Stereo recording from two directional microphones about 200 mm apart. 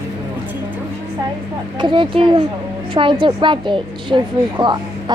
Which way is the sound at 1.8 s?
25° right (ahead or behind).